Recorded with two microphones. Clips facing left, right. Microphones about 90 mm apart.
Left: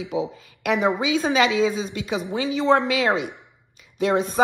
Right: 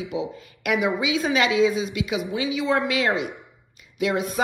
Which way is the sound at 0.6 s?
35° left (ahead or behind).